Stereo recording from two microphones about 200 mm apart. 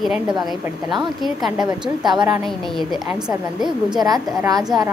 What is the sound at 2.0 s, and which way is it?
Speech, 20° right (ahead or behind).